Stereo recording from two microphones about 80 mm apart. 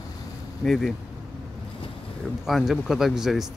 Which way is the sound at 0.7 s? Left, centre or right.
Centre.